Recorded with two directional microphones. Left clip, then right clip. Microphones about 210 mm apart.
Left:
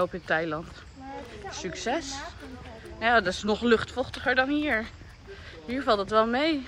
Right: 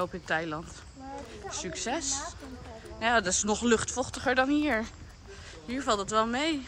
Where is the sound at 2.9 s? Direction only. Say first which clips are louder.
Left 3 dB; 15° right (ahead or behind).